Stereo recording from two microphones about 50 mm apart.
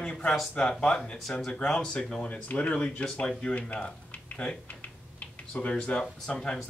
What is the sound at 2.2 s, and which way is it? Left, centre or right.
Speech, left.